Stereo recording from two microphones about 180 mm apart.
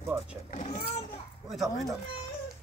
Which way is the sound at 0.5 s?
35° left (ahead or behind).